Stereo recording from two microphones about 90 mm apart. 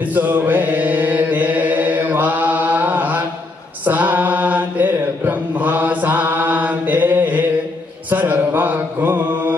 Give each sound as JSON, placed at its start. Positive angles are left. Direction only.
{"t": 0.1, "sound": "mantra", "side_deg": -20}